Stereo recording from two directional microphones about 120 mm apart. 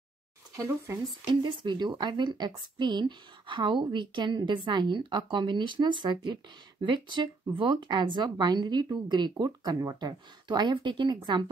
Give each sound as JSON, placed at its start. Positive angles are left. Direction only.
{"t": 0.6, "sound": "speech", "side_deg": -20}
{"t": 1.3, "sound": "speech", "side_deg": -40}